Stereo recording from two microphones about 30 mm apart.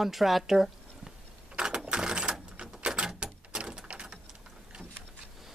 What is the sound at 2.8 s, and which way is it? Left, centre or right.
Door, right.